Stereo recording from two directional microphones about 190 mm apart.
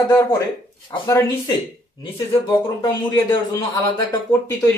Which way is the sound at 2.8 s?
20° left (ahead or behind).